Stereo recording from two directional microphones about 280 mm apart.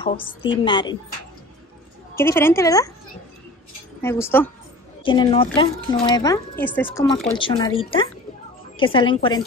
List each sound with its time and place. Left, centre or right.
0.0 s speech: centre
2.1 s speech: centre
4.0 s speech: centre